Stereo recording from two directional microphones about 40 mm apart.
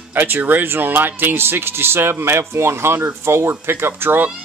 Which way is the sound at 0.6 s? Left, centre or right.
Right.